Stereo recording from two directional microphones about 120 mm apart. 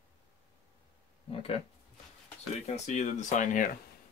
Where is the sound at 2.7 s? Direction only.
70° left (ahead or behind); by 3.6 s 90° left.